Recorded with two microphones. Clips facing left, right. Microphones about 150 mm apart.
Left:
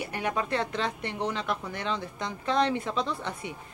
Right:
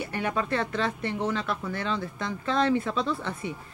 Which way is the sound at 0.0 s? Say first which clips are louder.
Right 1 dB; 15° left (ahead or behind).